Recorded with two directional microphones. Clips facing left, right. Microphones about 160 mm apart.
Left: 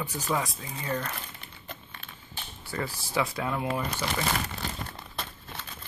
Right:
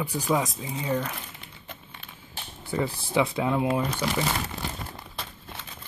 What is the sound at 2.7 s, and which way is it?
Speech, 15° right (ahead or behind).